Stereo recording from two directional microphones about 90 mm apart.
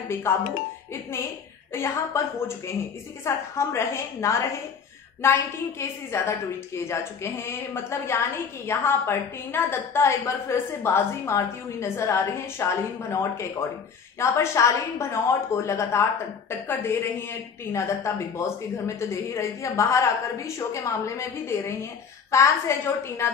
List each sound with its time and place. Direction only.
0.1 s a woman's voice: 25° left (ahead or behind)
1.7 s a woman's voice: 30° left (ahead or behind)